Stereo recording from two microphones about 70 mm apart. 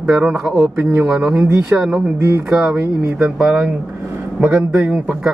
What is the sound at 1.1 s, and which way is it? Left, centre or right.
Speech, centre.